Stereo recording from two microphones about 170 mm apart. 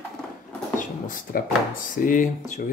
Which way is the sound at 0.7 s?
50° left (ahead or behind).